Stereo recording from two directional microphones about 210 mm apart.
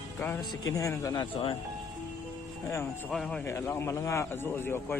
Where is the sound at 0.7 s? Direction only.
15° left (ahead or behind).